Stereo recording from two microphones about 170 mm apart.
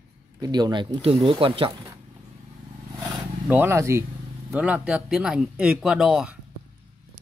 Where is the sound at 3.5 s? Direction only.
15° right (ahead or behind).